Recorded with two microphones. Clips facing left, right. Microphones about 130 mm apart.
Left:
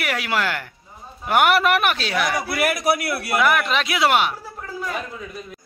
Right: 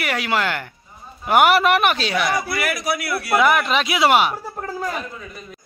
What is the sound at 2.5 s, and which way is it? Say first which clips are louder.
Speech: left 3 dB; 50° left (ahead or behind).